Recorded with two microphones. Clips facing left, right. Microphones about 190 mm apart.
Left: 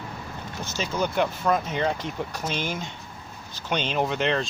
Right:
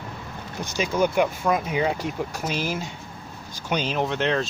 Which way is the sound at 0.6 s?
15° right (ahead or behind).